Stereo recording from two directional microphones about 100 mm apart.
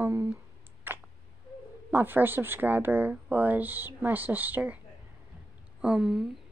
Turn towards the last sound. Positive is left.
turn(degrees=-5)  # may be behind; listen again after turning